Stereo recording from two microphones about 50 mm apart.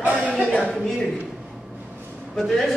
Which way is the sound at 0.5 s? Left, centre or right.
Centre.